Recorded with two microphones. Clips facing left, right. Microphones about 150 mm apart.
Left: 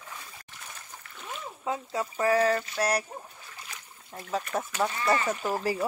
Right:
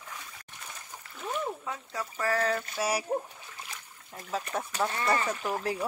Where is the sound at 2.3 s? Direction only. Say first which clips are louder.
Left 4 dB; 5° left (ahead or behind).